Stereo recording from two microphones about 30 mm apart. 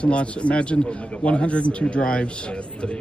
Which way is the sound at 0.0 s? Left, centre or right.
Left.